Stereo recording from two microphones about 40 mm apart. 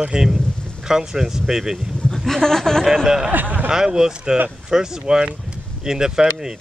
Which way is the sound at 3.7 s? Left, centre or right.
Centre.